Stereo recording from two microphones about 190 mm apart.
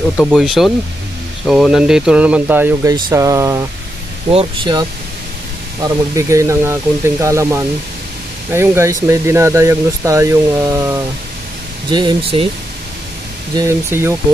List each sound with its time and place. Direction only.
0.2 s speech: centre (ahead or behind); by 3.6 s 15° right (ahead or behind)
4.3 s speech: 25° right (ahead or behind)
5.8 s speech: 15° right (ahead or behind)
13.6 s speech: 15° right (ahead or behind)